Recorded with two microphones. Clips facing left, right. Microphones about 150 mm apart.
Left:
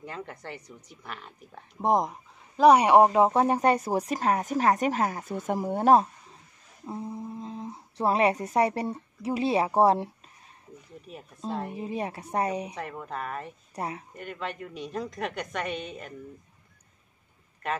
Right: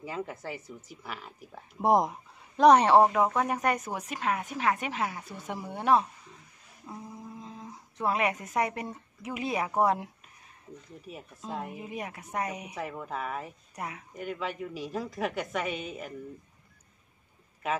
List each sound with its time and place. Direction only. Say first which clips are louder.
0.0 s speech: right 3 dB; 5° right (ahead or behind); by 3.1 s 15° left (ahead or behind)
3.1 s speech: left 5 dB; 25° left (ahead or behind); by 6.0 s 40° left (ahead or behind)
6.9 s speech: left 7 dB; 25° left (ahead or behind)
11.1 s speech: left 4 dB; centre (ahead or behind)
11.7 s speech: left 6 dB; 30° left (ahead or behind)
12.7 s speech: even; centre (ahead or behind)
13.7 s speech: left 5 dB; 30° left (ahead or behind)
14.1 s speech: right 1 dB; 5° right (ahead or behind)
17.6 s speech: even; 5° right (ahead or behind)